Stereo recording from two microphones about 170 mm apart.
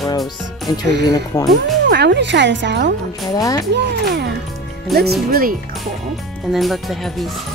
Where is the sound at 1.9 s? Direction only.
80° right.